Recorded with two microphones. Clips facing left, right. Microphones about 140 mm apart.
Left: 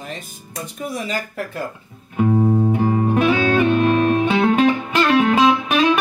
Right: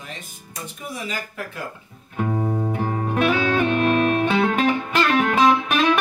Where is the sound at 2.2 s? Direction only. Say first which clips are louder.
Left 7 dB; 5° left (ahead or behind).